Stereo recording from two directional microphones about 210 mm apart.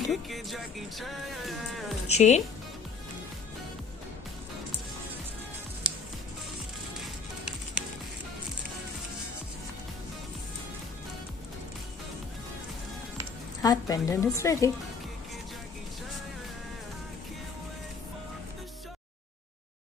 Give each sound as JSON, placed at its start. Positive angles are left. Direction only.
{"t": 0.1, "sound": "music", "side_deg": 0}
{"t": 2.0, "sound": "speech", "side_deg": 30}
{"t": 5.9, "sound": "music", "side_deg": -5}
{"t": 13.6, "sound": "a woman's voice", "side_deg": 15}